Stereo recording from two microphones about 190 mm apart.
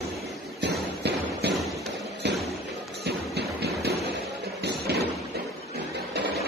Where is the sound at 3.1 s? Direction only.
60° right (ahead or behind).